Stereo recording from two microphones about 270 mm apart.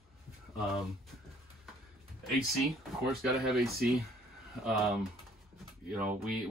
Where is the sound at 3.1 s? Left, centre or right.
Centre.